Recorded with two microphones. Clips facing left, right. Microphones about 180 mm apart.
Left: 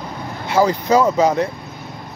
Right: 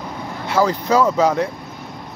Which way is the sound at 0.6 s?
25° left (ahead or behind).